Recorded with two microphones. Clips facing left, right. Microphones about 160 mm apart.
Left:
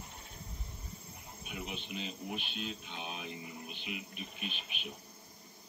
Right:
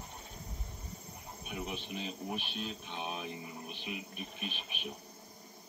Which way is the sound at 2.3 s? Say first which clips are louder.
Right 1 dB; 40° right (ahead or behind).